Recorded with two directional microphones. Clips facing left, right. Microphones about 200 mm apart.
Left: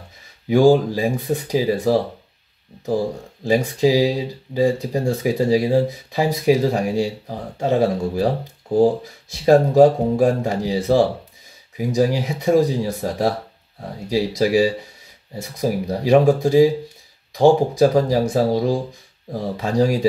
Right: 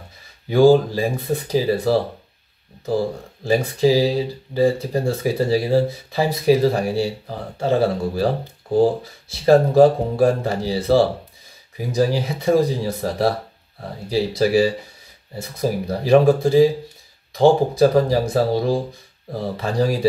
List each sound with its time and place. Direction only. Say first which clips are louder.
0.5 s speech: right 1 dB; 15° left (ahead or behind)
3.4 s speech: even; 15° left (ahead or behind)